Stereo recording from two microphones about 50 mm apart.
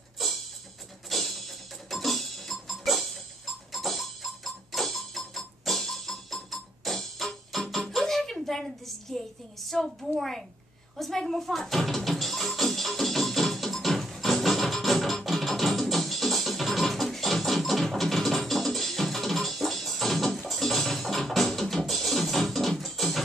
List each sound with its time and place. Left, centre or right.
0.2 s music: centre
1.9 s tick-tock: centre
7.7 s a woman's voice: centre
11.0 s music: centre